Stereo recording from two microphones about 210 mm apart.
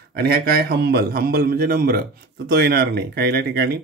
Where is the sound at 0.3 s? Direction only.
45° right (ahead or behind).